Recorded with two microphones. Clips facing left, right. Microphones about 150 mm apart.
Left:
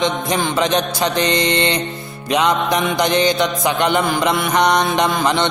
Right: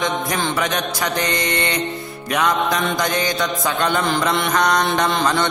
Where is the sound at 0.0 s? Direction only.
20° left (ahead or behind).